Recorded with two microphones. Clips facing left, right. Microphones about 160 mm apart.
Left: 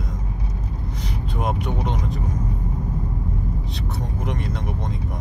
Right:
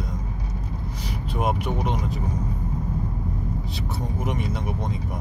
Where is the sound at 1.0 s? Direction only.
5° right (ahead or behind).